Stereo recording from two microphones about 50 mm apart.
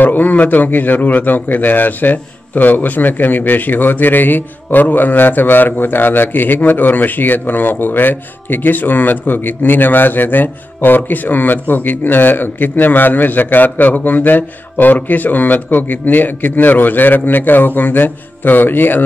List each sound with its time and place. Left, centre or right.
0.0 s a man's voice: left